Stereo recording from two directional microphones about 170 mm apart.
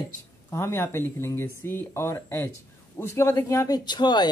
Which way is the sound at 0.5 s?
15° left (ahead or behind).